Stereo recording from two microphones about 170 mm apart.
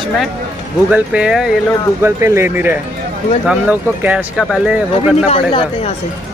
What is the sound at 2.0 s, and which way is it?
Speech, 15° right (ahead or behind).